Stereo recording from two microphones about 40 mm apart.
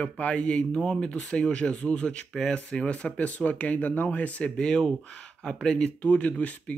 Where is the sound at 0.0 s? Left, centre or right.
Left.